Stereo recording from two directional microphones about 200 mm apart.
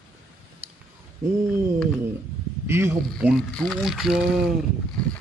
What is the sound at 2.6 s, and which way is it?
Speech, 10° right (ahead or behind).